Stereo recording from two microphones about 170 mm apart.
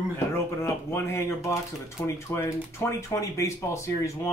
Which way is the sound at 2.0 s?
15° left (ahead or behind).